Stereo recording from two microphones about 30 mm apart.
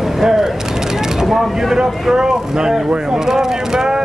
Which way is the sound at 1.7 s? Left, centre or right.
Centre.